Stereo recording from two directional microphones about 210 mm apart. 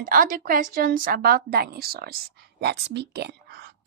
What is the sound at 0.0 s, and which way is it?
A woman's voice, 40° right (ahead or behind).